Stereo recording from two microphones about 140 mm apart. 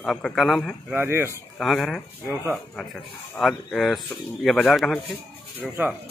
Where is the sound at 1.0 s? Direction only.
15° right (ahead or behind).